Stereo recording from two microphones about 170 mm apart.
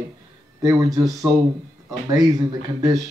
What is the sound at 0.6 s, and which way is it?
Speech, 20° right (ahead or behind).